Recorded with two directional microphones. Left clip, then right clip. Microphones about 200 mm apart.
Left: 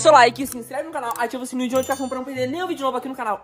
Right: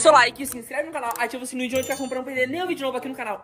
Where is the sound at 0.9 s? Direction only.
15° left (ahead or behind).